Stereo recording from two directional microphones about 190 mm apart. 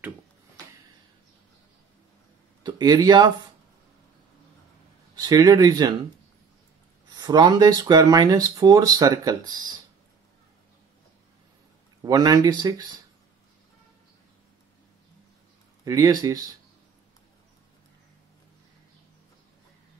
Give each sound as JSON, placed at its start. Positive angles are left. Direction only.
{"t": 2.6, "sound": "speech", "side_deg": -20}
{"t": 5.2, "sound": "speech", "side_deg": -20}
{"t": 7.1, "sound": "speech", "side_deg": -20}
{"t": 12.0, "sound": "speech", "side_deg": -20}
{"t": 15.8, "sound": "speech", "side_deg": -20}